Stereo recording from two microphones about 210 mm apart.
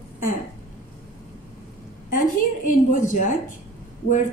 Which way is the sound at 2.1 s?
40° left (ahead or behind).